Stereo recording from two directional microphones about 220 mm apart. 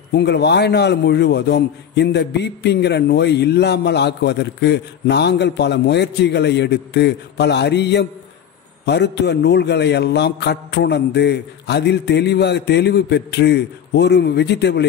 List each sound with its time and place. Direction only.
0.1 s a man's voice: 50° left (ahead or behind)